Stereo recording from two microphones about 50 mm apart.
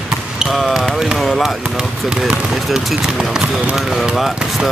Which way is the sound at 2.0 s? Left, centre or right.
Centre.